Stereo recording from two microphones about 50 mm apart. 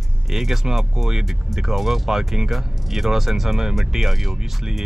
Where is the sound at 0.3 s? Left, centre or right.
Centre.